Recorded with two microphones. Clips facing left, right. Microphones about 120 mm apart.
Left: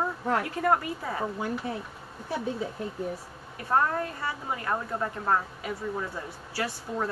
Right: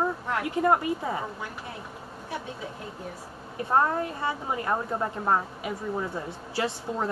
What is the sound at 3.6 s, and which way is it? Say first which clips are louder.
Speech: right 2 dB; 20° right (ahead or behind).